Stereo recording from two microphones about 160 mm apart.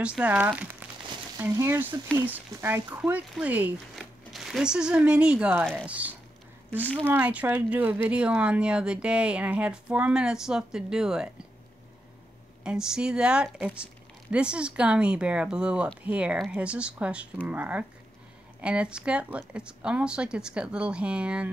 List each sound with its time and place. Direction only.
0.0 s speech: 5° right (ahead or behind)
6.8 s speech: 10° left (ahead or behind)
7.1 s speech: 10° right (ahead or behind)
12.6 s a woman's voice: 5° right (ahead or behind)